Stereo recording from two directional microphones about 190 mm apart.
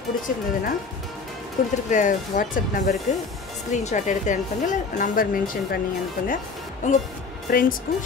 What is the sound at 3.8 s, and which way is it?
Speech, 40° left (ahead or behind).